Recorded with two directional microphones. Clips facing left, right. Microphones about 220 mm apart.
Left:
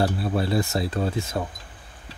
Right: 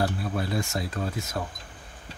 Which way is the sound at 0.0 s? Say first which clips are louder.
Left 4 dB; 30° left (ahead or behind).